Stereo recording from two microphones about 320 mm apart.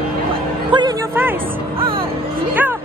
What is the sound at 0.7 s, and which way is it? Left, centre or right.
Music, centre.